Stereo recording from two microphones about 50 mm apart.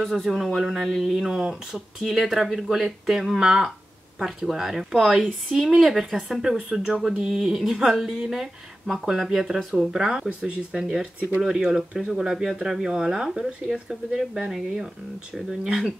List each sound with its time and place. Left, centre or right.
0.0 s speech: centre
15.5 s speech: centre